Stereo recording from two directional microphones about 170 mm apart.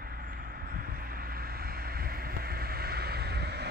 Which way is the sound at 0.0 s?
60° right (ahead or behind).